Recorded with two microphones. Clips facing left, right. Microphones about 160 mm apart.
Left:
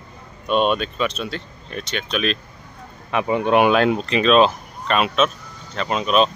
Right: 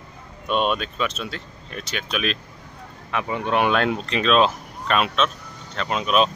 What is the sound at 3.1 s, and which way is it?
Speech, 20° left (ahead or behind).